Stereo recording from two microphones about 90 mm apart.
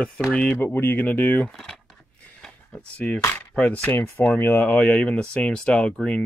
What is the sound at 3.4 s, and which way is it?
Speech, 10° left (ahead or behind).